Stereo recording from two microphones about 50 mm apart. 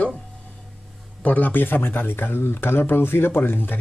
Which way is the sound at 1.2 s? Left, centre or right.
Left.